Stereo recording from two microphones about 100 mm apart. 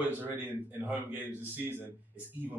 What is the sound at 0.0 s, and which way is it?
A man's voice, 20° right (ahead or behind).